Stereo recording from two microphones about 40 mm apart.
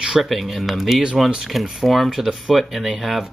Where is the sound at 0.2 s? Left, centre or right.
Centre.